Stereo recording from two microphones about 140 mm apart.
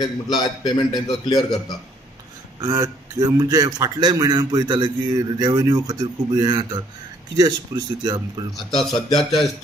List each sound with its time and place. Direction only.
0.0 s a man's voice: 30° left (ahead or behind)
2.6 s a man's voice: 25° right (ahead or behind)
8.5 s speech: centre (ahead or behind)